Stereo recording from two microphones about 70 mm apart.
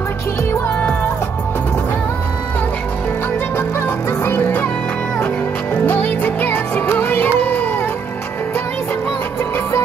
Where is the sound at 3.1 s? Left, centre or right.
Left.